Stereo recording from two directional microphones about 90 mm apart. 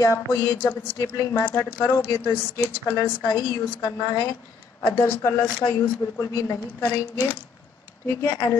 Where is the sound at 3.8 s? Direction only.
40° left (ahead or behind).